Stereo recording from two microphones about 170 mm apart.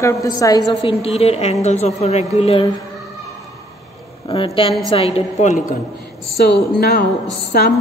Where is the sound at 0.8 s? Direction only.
35° left (ahead or behind).